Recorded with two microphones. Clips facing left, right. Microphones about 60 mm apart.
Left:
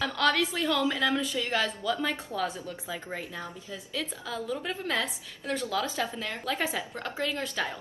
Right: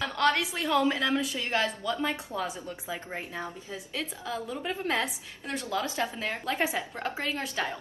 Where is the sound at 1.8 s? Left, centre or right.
Centre.